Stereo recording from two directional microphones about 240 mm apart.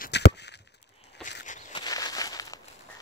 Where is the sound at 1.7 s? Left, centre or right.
Centre.